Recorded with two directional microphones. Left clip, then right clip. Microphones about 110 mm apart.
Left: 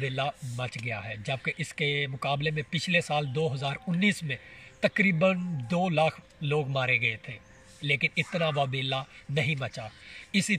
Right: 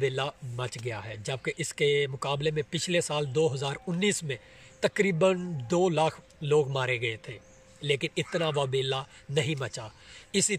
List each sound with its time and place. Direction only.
0.0 s speech: 45° right (ahead or behind)